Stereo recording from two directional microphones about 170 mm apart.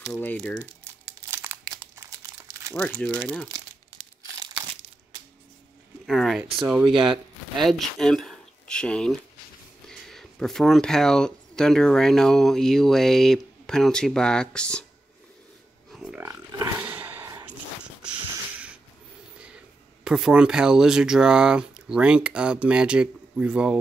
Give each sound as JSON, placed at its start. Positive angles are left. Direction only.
{"t": 0.1, "sound": "speech", "side_deg": 10}
{"t": 1.3, "sound": "crumpling", "side_deg": -15}
{"t": 3.2, "sound": "speech", "side_deg": 5}
{"t": 6.0, "sound": "speech", "side_deg": 0}
{"t": 15.9, "sound": "a sound", "side_deg": -5}
{"t": 20.1, "sound": "speech", "side_deg": -5}